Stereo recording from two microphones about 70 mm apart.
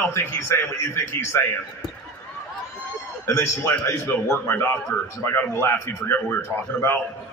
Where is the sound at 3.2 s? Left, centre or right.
Left.